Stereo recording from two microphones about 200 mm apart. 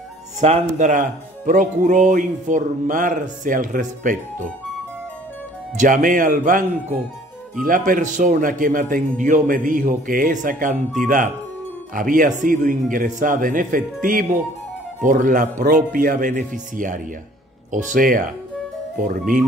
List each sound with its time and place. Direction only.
0.4 s speech: 35° right (ahead or behind)
5.8 s a man's voice: 40° right (ahead or behind)